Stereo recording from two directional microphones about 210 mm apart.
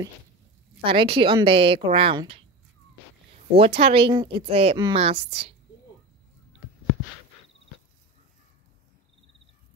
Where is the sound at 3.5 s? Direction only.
30° right (ahead or behind).